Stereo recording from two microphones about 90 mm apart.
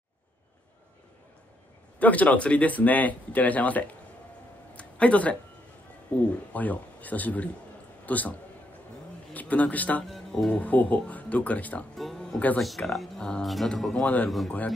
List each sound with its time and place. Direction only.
2.0 s speech: 15° left (ahead or behind)
4.7 s a sound: 15° left (ahead or behind)
6.1 s a man's voice: 15° left (ahead or behind)
10.0 s speech: centre (ahead or behind)
12.0 s music: centre (ahead or behind)
12.5 s speech: centre (ahead or behind)
14.0 s speech: 15° left (ahead or behind)